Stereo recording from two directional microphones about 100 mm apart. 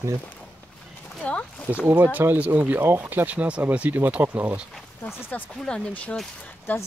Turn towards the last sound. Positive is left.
turn(degrees=20)  # may be behind; listen again after turning